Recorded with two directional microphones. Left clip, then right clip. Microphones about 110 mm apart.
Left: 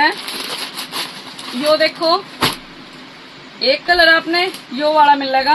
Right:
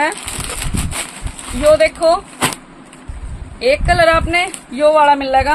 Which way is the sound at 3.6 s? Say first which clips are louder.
Even; 45° right (ahead or behind).